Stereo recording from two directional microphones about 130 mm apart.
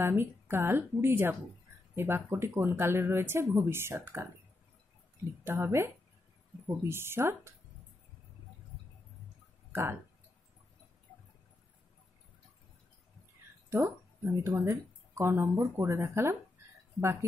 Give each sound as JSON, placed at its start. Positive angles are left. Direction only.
{"t": 0.0, "sound": "speech", "side_deg": -15}
{"t": 5.4, "sound": "speech", "side_deg": -20}
{"t": 9.7, "sound": "a sound", "side_deg": -20}
{"t": 13.7, "sound": "speech", "side_deg": -20}